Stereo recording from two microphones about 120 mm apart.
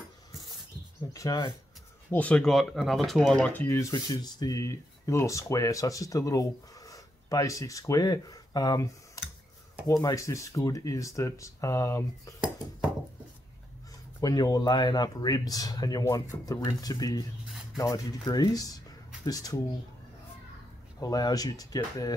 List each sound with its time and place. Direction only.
1.1 s speech: 30° left (ahead or behind)
2.0 s speech: 10° left (ahead or behind)
3.5 s speech: 25° left (ahead or behind)
3.9 s speech: 35° left (ahead or behind)
14.2 s speech: 35° left (ahead or behind)
21.0 s speech: 30° left (ahead or behind)